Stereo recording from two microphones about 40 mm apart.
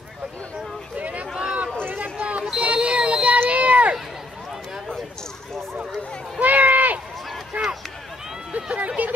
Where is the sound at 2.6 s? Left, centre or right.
Right.